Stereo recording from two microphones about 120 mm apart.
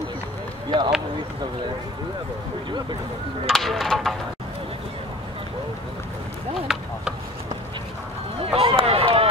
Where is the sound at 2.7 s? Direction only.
40° right (ahead or behind).